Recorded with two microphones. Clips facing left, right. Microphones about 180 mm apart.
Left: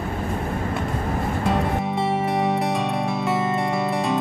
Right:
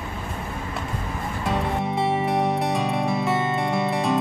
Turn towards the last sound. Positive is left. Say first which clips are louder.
# even
turn(degrees=0)  # may be behind; listen again after turning